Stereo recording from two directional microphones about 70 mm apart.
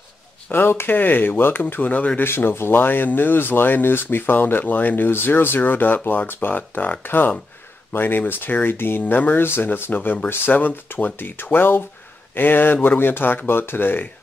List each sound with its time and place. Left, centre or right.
0.5 s speech: left
2.2 s speech: left